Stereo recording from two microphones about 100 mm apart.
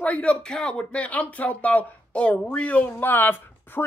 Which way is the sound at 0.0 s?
15° left (ahead or behind).